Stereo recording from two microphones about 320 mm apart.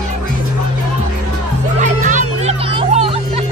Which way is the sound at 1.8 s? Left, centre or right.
Right.